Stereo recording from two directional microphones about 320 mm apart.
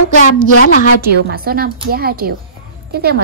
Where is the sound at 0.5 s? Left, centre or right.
Left.